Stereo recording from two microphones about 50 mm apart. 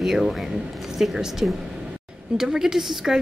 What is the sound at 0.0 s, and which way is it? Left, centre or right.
A woman's voice, centre.